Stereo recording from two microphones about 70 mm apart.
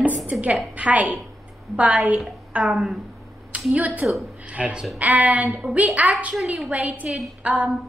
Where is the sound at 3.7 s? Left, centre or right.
Right.